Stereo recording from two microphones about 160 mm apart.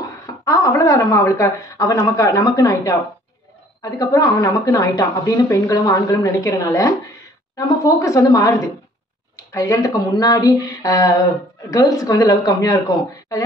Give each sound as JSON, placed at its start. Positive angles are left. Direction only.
{"t": 0.5, "sound": "a woman's voice", "side_deg": 20}